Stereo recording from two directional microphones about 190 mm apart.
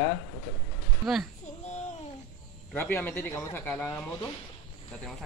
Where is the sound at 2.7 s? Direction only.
10° left (ahead or behind).